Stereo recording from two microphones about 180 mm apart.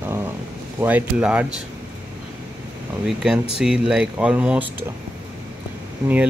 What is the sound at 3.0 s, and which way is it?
Speech, 5° right (ahead or behind).